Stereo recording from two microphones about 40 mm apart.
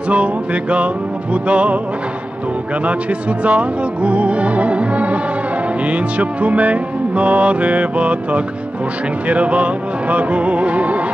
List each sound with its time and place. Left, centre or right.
0.1 s music: right
3.4 s music: right